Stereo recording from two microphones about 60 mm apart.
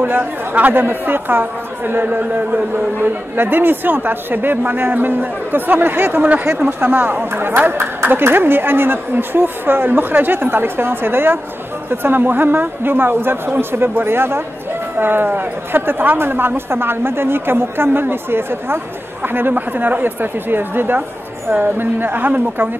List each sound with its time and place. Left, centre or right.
0.0 s a woman's voice: right